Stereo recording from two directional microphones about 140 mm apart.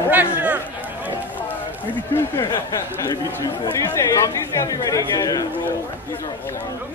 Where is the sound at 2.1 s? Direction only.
20° left (ahead or behind).